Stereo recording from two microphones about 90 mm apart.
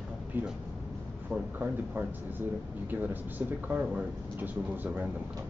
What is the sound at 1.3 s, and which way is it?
Speech, 15° right (ahead or behind).